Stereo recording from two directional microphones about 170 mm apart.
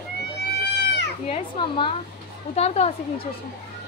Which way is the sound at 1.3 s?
30° left (ahead or behind).